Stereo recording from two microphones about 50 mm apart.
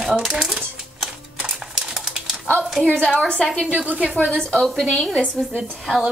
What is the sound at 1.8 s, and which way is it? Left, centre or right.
Typewriter, centre.